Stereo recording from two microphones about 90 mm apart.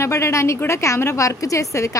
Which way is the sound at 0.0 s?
30° left (ahead or behind).